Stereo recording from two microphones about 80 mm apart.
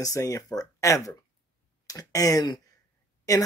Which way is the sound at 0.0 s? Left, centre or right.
Left.